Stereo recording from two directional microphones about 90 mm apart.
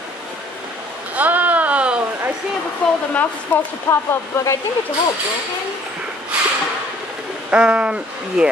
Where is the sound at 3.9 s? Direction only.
30° left (ahead or behind).